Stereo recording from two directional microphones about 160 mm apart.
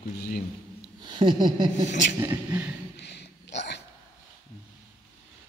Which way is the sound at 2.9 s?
90° left.